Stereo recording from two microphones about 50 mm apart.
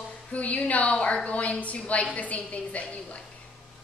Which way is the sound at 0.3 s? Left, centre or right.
Left.